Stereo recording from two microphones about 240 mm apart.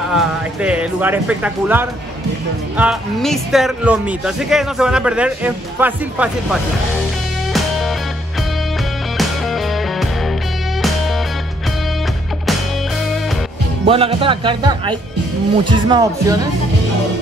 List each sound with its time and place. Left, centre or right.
0.1 s speech: centre
9.2 s music: centre
13.8 s speech: right